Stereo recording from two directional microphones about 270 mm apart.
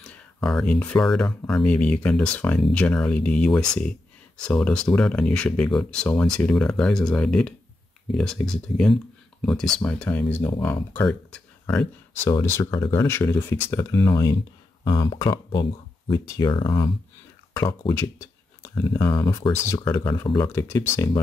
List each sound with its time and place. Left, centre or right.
0.0 s speech: centre